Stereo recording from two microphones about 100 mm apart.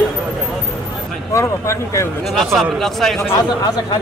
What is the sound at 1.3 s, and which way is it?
Speech, 30° left (ahead or behind).